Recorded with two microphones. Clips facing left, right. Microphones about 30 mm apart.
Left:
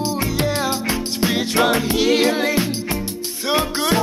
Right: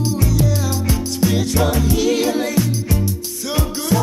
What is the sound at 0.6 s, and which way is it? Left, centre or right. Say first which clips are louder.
Music: even; left.